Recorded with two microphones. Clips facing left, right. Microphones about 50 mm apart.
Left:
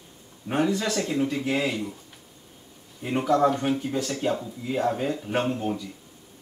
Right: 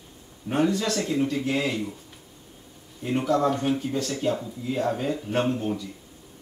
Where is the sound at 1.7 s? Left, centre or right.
Centre.